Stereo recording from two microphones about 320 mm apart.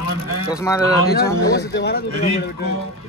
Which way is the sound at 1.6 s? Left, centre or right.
Left.